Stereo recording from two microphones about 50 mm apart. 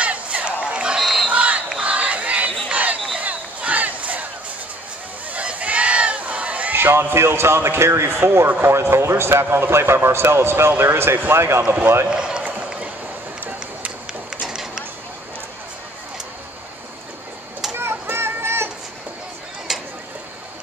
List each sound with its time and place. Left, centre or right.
0.0 s a sound: right
0.9 s crowd: centre
1.2 s battle cry: right
1.8 s crowd: right
2.7 s battle cry: right
5.3 s a sound: right
6.7 s a man's voice: right
12.1 s run: centre
13.5 s run: right
14.4 s a sound: centre
17.7 s children playing: right
19.7 s a sound: centre